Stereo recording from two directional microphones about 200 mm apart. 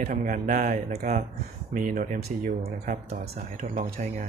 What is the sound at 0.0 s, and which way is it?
Speech, 40° right (ahead or behind).